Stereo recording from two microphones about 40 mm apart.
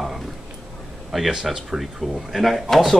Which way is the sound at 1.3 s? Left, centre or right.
Centre.